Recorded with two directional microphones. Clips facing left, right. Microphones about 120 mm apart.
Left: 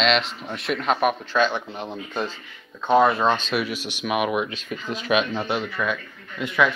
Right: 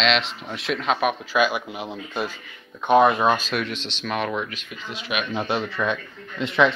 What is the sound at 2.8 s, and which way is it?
Speech, 20° right (ahead or behind).